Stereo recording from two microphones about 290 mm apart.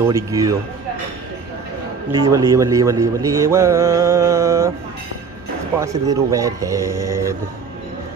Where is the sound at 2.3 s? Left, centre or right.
Centre.